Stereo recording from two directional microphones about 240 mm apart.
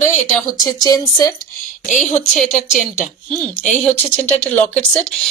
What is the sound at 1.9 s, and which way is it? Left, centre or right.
Speech, centre.